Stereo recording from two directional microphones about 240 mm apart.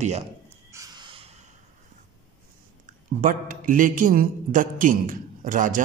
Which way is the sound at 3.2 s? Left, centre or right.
Right.